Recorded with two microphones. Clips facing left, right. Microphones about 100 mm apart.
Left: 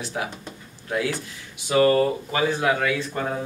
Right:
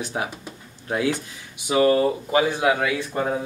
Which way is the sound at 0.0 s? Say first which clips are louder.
Right 2 dB; 25° right (ahead or behind).